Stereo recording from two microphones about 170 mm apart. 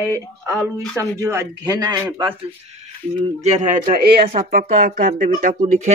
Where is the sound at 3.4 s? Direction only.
45° right (ahead or behind).